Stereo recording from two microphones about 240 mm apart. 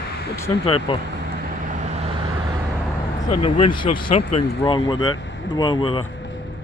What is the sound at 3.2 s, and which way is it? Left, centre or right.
Speech, left.